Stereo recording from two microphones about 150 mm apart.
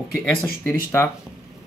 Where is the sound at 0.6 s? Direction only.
15° left (ahead or behind).